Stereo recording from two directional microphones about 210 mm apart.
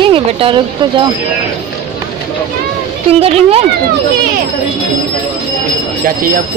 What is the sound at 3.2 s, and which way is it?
Speech, 30° right (ahead or behind).